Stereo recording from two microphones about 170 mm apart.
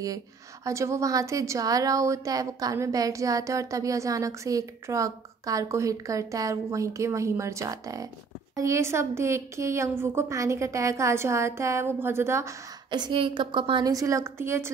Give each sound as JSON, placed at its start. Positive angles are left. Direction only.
{"t": 0.7, "sound": "a woman's voice", "side_deg": -15}